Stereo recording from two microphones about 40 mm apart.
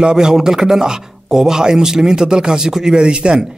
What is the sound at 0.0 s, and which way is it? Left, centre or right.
Speech, centre.